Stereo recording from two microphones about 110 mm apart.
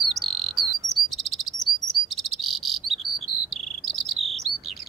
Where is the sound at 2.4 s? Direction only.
Centre (ahead or behind).